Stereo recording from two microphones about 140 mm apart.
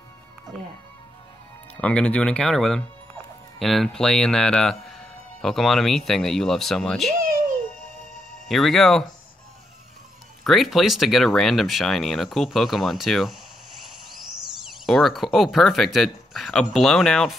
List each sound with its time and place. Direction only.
1.8 s speech: 10° left (ahead or behind)
7.2 s music: 90° right
8.1 s music: centre (ahead or behind)
10.4 s speech: centre (ahead or behind)
14.6 s speech: centre (ahead or behind)